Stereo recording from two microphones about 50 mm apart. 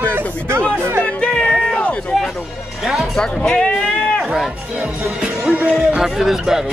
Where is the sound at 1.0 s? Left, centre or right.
Centre.